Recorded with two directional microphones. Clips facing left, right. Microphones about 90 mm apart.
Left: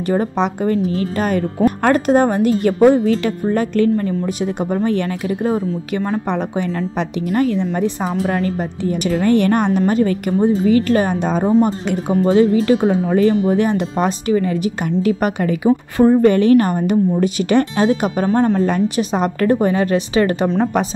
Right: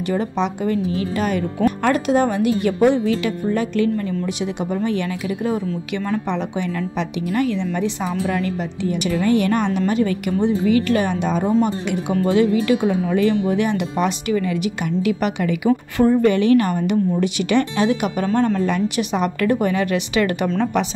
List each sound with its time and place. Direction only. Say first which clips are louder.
0.1 s a woman's voice: left 4 dB; 45° left (ahead or behind)